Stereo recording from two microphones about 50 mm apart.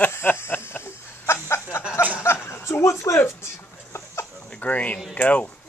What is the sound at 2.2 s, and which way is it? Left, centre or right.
Chuckle, left.